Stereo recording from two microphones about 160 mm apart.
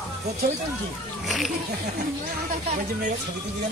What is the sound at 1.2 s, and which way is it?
Music, centre (ahead or behind).